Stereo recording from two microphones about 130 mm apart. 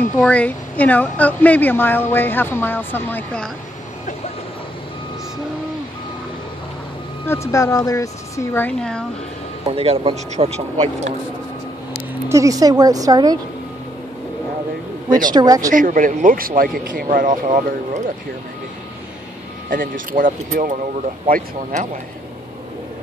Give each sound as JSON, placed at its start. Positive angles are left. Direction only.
{"t": 0.2, "sound": "speech", "side_deg": 10}
{"t": 7.2, "sound": "speech", "side_deg": 25}
{"t": 9.7, "sound": "a man's voice", "side_deg": -50}
{"t": 12.3, "sound": "a woman's voice", "side_deg": -25}
{"t": 15.2, "sound": "a woman's voice", "side_deg": -30}
{"t": 15.7, "sound": "speech", "side_deg": -90}
{"t": 19.7, "sound": "speech", "side_deg": -90}